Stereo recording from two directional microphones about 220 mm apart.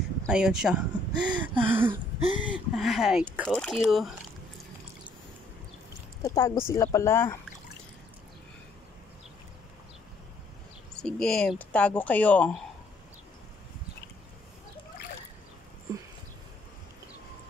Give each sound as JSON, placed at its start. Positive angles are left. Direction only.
{"t": 0.3, "sound": "speech", "side_deg": -5}
{"t": 1.2, "sound": "gasp", "side_deg": -20}
{"t": 1.6, "sound": "a sound", "side_deg": -10}
{"t": 2.1, "sound": "a sound", "side_deg": -25}
{"t": 2.4, "sound": "speech", "side_deg": 0}
{"t": 6.2, "sound": "speech", "side_deg": 15}
{"t": 11.0, "sound": "speech", "side_deg": 5}